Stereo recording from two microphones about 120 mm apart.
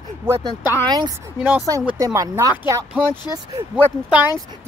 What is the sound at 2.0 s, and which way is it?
Speech, 30° right (ahead or behind).